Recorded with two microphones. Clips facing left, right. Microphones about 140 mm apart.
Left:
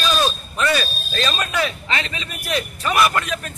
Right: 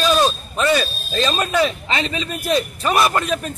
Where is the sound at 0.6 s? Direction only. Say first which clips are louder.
Right 3 dB; 20° right (ahead or behind).